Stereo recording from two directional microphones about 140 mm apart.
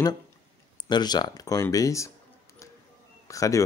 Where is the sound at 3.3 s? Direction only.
25° left (ahead or behind).